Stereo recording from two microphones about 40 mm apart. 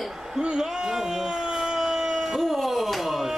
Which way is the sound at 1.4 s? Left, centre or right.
Centre.